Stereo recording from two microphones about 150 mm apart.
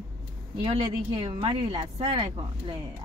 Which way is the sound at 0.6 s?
40° right (ahead or behind).